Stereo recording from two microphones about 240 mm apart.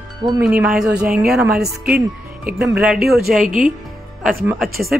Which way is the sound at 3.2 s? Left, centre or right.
Right.